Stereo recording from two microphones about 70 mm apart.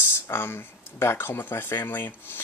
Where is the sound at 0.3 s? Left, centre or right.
Left.